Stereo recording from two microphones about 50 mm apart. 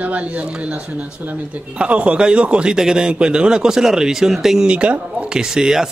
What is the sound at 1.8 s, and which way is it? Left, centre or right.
A man's voice, right.